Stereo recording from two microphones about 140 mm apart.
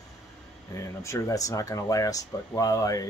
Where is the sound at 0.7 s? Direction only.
20° left (ahead or behind).